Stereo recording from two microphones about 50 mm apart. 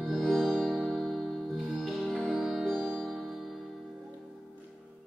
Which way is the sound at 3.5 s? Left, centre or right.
Centre.